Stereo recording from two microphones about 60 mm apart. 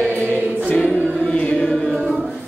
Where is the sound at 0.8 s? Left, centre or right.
Left.